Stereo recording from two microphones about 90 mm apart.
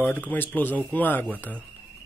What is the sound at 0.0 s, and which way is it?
Speech, 20° left (ahead or behind).